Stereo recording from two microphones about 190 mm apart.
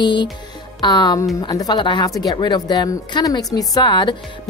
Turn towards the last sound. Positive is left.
turn(degrees=25)  # may be behind; listen again after turning